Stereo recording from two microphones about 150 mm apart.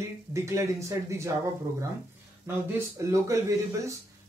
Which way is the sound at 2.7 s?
20° right (ahead or behind).